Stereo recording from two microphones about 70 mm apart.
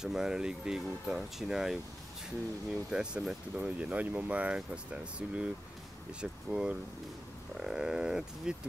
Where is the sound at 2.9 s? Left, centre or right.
Centre.